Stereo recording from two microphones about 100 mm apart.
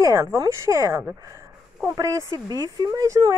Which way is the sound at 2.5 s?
40° right (ahead or behind).